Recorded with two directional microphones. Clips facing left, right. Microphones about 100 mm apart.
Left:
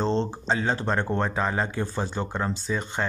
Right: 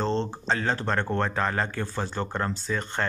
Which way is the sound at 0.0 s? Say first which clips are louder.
Left 2 dB; 15° left (ahead or behind).